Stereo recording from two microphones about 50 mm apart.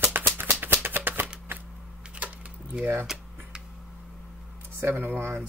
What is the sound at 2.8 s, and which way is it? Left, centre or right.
Speech, right.